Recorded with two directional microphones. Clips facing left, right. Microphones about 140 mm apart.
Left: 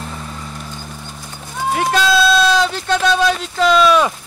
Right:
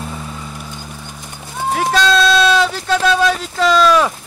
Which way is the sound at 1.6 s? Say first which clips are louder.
Right 1 dB; centre (ahead or behind).